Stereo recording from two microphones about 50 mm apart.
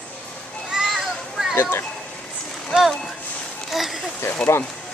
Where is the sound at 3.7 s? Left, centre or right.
Centre.